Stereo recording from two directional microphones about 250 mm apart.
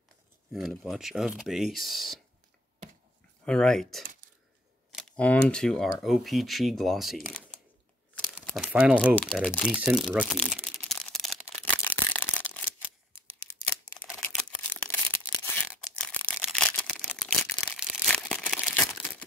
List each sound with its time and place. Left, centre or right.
0.5 s speech: centre
3.4 s speech: centre
9.8 s a sound: centre